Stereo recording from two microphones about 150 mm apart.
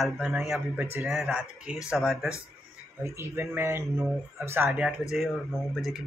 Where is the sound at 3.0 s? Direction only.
15° right (ahead or behind).